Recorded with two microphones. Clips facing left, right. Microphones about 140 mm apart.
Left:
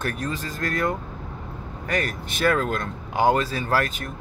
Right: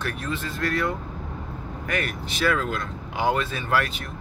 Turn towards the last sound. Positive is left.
turn(degrees=45)  # may be behind; listen again after turning